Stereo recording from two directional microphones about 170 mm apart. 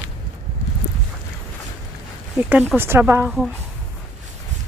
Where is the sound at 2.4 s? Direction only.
10° right (ahead or behind).